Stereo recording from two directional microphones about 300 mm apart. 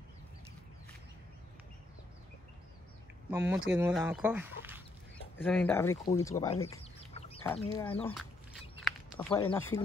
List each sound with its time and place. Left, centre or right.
3.3 s speech: centre
8.1 s a sound: centre
9.1 s speech: centre